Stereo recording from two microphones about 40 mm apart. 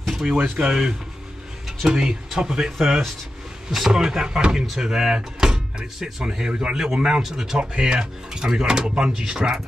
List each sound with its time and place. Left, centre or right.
0.1 s a sound: centre
0.4 s speech: centre
4.0 s speech: centre
6.5 s speech: right
7.7 s speech: right